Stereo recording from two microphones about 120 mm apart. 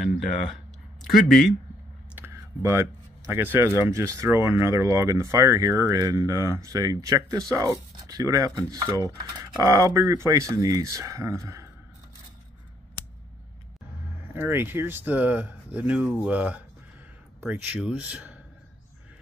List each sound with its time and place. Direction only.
2.1 s speech: 20° right (ahead or behind)
14.3 s speech: 15° right (ahead or behind)